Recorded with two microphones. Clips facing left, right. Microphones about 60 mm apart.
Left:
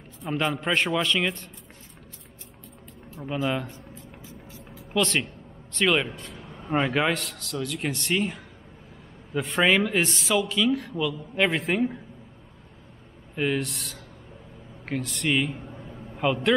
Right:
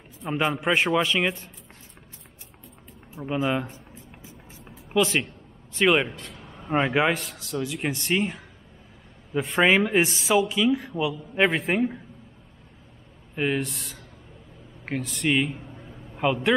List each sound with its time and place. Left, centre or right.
0.2 s a man's voice: centre
3.3 s music: centre
4.9 s a man's voice: centre
6.3 s a sound: centre
6.7 s a man's voice: centre
9.6 s a man's voice: centre
13.4 s a man's voice: centre
15.7 s a sound: centre